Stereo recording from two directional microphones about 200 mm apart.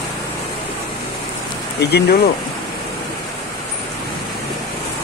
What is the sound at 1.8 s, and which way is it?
Speech, 55° left (ahead or behind).